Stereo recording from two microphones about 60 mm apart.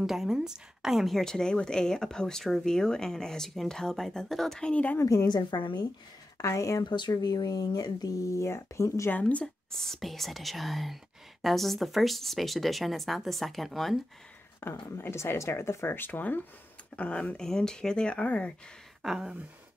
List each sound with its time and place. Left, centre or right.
0.0 s a woman's voice: centre
4.6 s speech: centre
5.0 s a woman's voice: left
5.5 s speech: left
6.3 s a woman's voice: left
7.4 s speech: left
9.1 s speech: left
9.8 s speech: centre
14.6 s speech: left
17.4 s a woman's voice: centre
19.0 s a sound: centre